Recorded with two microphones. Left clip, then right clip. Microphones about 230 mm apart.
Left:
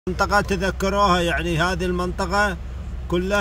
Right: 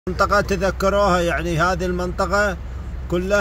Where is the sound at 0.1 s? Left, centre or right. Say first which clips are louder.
Right 2 dB; centre.